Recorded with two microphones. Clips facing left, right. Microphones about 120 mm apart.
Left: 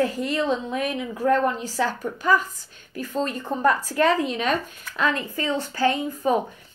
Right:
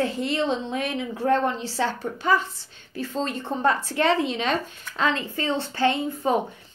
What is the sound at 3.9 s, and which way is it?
A woman's voice, 30° right (ahead or behind).